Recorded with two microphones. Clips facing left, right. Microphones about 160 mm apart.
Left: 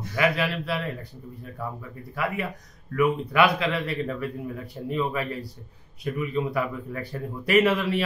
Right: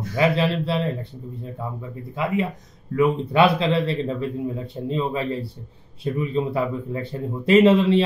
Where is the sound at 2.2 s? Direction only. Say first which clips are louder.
Right 5 dB; 20° right (ahead or behind).